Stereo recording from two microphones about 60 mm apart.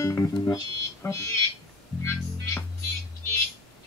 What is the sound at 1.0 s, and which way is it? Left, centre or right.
Fire alarm, left.